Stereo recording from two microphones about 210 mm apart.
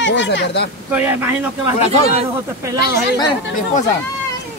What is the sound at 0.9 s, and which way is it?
Speech, 10° right (ahead or behind).